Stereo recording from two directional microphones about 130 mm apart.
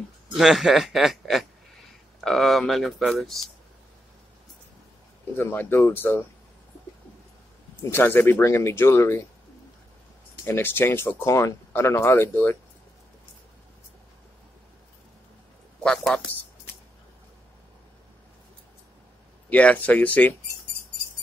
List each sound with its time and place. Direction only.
0.4 s speech: centre (ahead or behind)
5.4 s speech: 15° left (ahead or behind)
7.9 s speech: 15° left (ahead or behind)
10.4 s speech: 20° left (ahead or behind)
15.8 s speech: 5° left (ahead or behind)
19.5 s speech: 10° left (ahead or behind)